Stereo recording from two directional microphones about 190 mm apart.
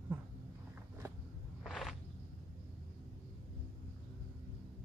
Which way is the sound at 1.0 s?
15° right (ahead or behind).